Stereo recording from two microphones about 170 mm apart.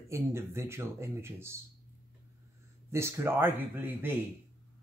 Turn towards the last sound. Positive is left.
turn(degrees=-10)  # may be behind; listen again after turning